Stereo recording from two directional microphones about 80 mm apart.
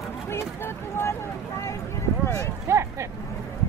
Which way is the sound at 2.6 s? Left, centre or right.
Right.